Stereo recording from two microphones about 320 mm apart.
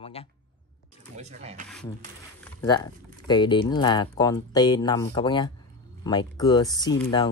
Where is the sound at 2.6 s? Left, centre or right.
Centre.